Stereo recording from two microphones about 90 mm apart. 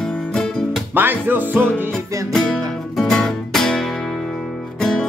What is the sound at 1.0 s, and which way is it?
Music, 20° right (ahead or behind).